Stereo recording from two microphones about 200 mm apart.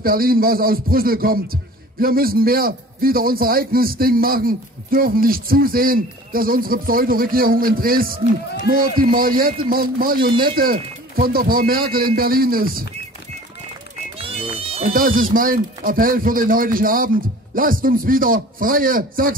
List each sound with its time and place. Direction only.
0.0 s speech: 45° right (ahead or behind)
14.1 s music: 30° right (ahead or behind)
14.9 s speech: 45° right (ahead or behind)